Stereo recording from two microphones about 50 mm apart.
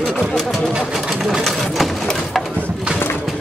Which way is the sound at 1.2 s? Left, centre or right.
Centre.